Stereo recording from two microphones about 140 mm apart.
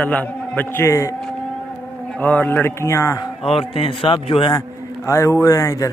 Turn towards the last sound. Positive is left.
turn(degrees=20)  # may be behind; listen again after turning